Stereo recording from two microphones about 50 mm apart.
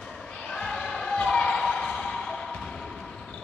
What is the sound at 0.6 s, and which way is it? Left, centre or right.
Basketball bounce, centre.